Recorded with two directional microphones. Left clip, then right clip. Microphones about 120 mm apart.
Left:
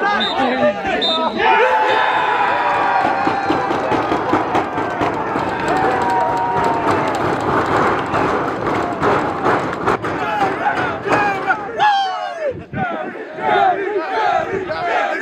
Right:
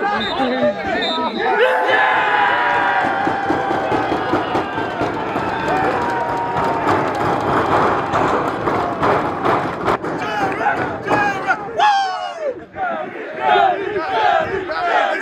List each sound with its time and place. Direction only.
0.0 s chatter: 25° left (ahead or behind)
0.7 s chatter: 65° left (ahead or behind)
11.2 s a sound: 5° right (ahead or behind)
13.5 s battle cry: 10° right (ahead or behind)